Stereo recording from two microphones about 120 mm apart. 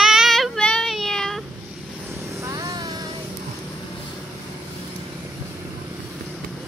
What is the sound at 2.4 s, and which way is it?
Vehicle, 30° right (ahead or behind).